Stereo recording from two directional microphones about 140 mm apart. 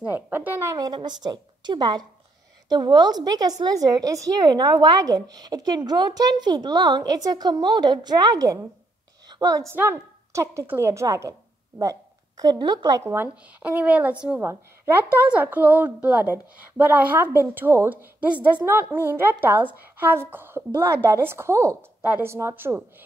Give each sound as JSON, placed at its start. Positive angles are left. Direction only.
{"t": 0.0, "sound": "a woman's voice", "side_deg": -15}
{"t": 13.0, "sound": "a woman's voice", "side_deg": -15}